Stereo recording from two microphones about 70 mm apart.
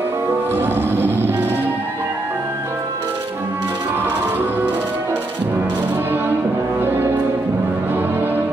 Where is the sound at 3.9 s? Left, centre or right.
Right.